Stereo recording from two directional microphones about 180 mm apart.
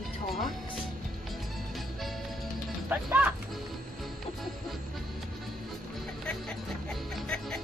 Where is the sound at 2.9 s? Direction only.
10° right (ahead or behind).